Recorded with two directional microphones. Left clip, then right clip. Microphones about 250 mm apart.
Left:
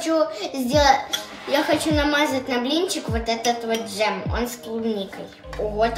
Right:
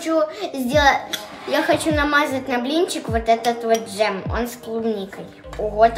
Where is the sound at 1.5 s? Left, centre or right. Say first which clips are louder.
Right 2 dB; centre.